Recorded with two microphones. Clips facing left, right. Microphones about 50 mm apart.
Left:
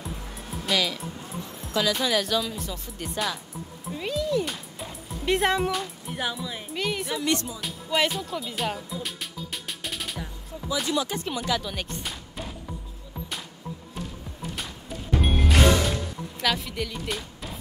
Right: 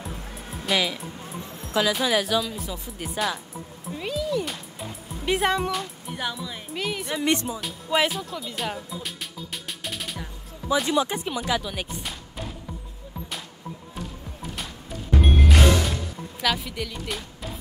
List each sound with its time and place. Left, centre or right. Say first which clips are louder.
0.0 s music: right 1 dB; centre
1.7 s speech: right 2 dB; centre
3.9 s music: left 1 dB; centre
10.9 s speech: right 3 dB; right
11.2 s speech: right 1 dB; centre
14.5 s music: right 1 dB; centre
16.3 s speech: right 1 dB; centre